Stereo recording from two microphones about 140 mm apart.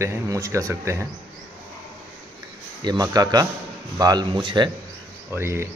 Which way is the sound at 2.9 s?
30° right (ahead or behind).